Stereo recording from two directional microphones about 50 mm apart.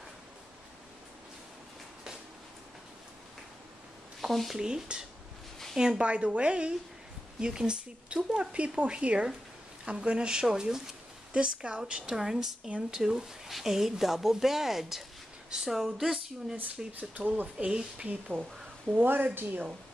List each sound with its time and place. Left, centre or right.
4.2 s speech: centre
4.6 s speech: centre
12.6 s speech: centre
13.0 s speech: centre
16.5 s speech: right
18.9 s speech: right